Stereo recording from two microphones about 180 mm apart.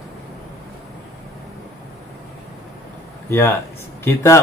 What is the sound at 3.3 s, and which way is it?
A man's voice, 15° left (ahead or behind).